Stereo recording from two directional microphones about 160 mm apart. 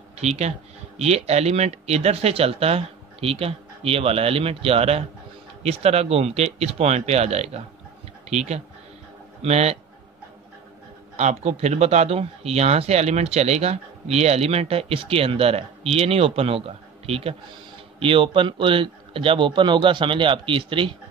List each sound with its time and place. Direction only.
0.2 s speech: 45° right (ahead or behind)
11.1 s speech: 45° right (ahead or behind)